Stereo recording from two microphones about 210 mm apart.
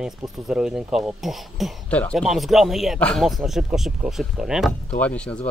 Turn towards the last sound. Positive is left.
turn(degrees=5)  # may be behind; listen again after turning